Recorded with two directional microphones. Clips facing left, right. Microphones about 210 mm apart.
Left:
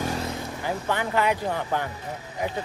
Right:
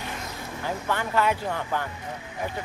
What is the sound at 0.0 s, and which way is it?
Vehicle, 35° left (ahead or behind).